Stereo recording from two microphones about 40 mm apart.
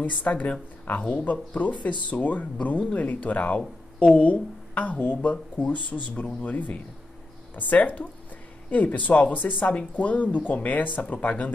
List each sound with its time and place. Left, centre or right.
0.0 s speech: left